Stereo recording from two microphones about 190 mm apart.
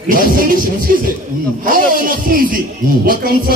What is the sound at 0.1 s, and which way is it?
A man's voice, 45° right (ahead or behind).